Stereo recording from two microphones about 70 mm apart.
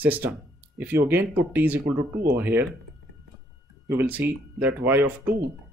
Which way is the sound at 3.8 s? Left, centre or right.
Right.